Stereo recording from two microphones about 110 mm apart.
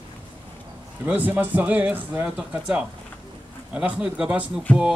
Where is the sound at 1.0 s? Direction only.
15° right (ahead or behind).